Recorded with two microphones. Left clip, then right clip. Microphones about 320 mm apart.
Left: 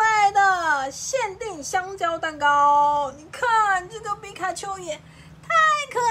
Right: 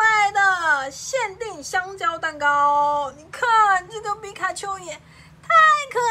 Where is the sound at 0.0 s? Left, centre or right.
Centre.